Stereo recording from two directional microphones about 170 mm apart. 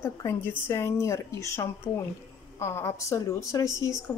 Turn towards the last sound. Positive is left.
turn(degrees=20)  # may be behind; listen again after turning